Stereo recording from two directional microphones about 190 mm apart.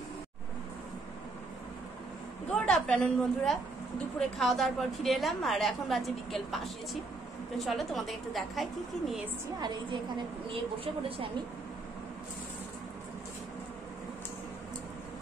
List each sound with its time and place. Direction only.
2.5 s a woman's voice: 5° left (ahead or behind)
10.1 s a woman's voice: 30° right (ahead or behind)